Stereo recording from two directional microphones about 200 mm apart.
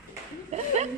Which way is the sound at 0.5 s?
35° right (ahead or behind).